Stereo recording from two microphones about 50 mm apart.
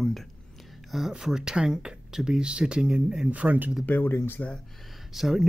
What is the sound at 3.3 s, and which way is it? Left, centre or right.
Speech, right.